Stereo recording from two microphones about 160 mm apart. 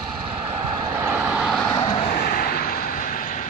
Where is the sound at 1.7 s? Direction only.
25° left (ahead or behind).